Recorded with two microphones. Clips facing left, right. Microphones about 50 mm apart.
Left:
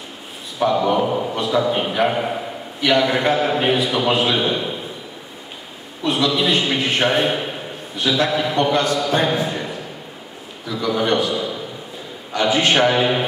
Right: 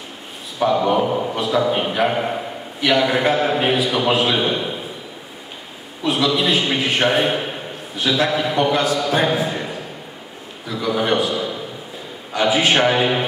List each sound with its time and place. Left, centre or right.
0.6 s a man's voice: centre
6.0 s a man's voice: centre
10.9 s a man's voice: centre